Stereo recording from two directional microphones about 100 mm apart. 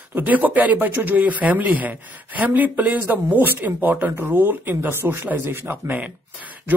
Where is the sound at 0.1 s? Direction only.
15° right (ahead or behind).